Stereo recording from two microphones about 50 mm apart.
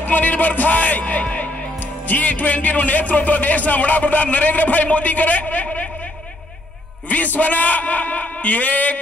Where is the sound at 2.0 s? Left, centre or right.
Left.